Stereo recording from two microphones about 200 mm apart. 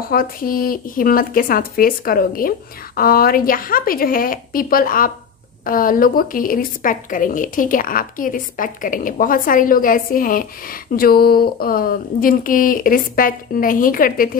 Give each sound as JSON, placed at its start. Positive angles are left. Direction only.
{"t": 0.1, "sound": "speech", "side_deg": 45}